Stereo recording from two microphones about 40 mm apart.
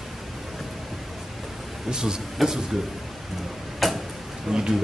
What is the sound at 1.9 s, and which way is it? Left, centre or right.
Speech, centre.